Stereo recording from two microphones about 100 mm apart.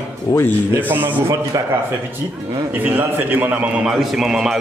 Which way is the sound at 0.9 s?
20° right (ahead or behind).